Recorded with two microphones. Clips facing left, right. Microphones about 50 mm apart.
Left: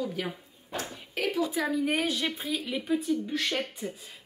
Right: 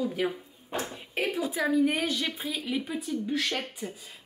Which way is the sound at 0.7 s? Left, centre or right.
Right.